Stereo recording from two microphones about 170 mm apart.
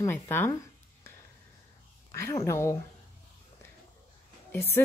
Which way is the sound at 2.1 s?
15° left (ahead or behind).